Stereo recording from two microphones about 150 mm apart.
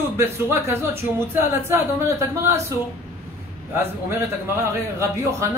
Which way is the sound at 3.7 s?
15° right (ahead or behind).